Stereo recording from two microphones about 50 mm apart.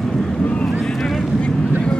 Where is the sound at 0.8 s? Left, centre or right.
Centre.